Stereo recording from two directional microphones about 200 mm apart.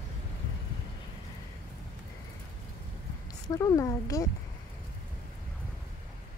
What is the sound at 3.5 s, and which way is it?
Speech, 15° left (ahead or behind).